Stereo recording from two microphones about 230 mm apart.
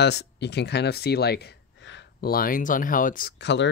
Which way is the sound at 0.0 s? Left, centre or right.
Left.